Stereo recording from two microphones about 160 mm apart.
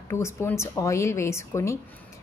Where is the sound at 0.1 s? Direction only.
15° left (ahead or behind).